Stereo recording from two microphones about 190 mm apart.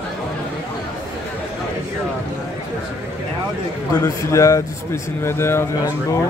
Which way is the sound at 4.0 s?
20° left (ahead or behind).